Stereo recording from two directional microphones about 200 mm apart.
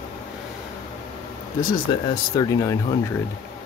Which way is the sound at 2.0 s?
20° left (ahead or behind).